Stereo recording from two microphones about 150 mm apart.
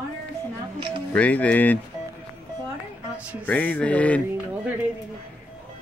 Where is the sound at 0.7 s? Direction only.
35° right (ahead or behind).